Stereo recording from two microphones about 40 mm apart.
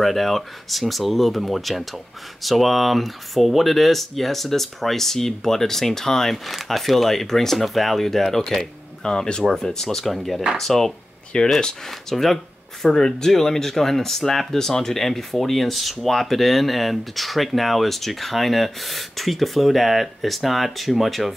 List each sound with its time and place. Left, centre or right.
0.0 s speech: centre
6.3 s speech: centre
11.3 s speech: left
11.9 s speech: centre